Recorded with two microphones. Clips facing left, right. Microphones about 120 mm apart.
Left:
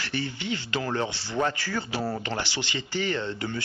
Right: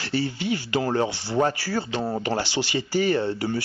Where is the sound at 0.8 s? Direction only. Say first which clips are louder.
Right 5 dB; 40° right (ahead or behind).